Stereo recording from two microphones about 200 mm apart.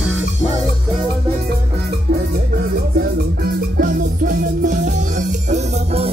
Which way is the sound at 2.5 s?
50° right (ahead or behind).